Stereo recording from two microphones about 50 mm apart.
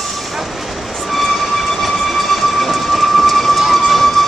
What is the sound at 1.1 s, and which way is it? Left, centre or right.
Train, centre.